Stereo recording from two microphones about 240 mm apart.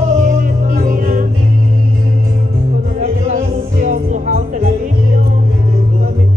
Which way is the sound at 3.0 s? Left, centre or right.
Right.